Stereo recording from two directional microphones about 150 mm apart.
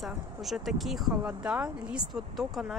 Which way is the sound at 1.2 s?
10° right (ahead or behind).